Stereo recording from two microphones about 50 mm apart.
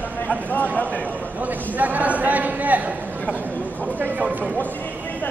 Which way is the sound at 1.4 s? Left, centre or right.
Right.